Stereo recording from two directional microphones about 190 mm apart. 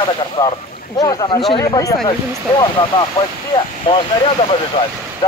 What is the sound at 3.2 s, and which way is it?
Speech, 20° left (ahead or behind).